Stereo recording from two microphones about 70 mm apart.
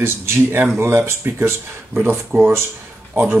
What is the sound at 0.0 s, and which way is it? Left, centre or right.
Speech, right.